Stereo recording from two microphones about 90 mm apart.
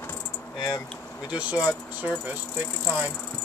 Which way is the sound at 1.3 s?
15° right (ahead or behind).